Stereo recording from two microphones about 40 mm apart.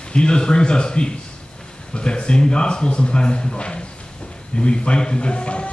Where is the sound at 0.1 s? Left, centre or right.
Left.